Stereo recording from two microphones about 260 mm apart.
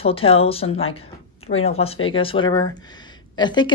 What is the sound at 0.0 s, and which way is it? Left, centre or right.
Speech, left.